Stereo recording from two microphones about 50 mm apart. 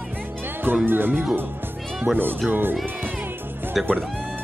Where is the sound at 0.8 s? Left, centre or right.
Right.